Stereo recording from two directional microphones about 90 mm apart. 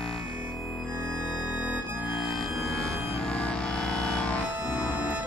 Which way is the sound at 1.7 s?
20° right (ahead or behind).